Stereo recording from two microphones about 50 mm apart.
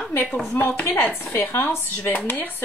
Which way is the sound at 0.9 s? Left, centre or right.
Left.